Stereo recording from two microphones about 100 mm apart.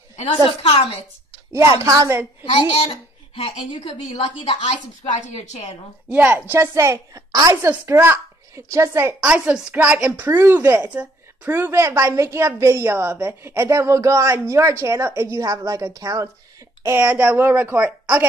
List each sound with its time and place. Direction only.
0.5 s a child's voice: 65° left (ahead or behind)
1.7 s a woman's voice: 35° right (ahead or behind)
2.5 s a child's voice: 60° left (ahead or behind); by 5.5 s 90° left
6.1 s speech: 15° right (ahead or behind)
6.5 s speech: 30° right (ahead or behind)
7.8 s speech: 20° right (ahead or behind)
9.2 s speech: 10° right (ahead or behind); by 16.3 s 35° right (ahead or behind)
17.0 s speech: 15° right (ahead or behind)